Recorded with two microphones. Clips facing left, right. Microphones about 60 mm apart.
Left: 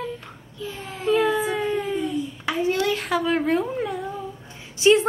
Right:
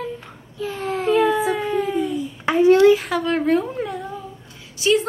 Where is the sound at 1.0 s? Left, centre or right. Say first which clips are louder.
Right 2 dB; centre.